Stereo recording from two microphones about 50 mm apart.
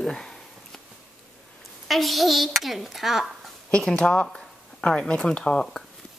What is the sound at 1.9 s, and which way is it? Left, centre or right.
A child's voice, centre.